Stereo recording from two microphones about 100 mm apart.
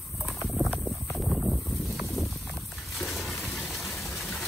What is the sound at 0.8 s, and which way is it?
Clip-clop, centre (ahead or behind).